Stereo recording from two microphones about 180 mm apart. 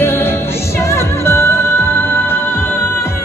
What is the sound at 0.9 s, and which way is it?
Music, 15° left (ahead or behind).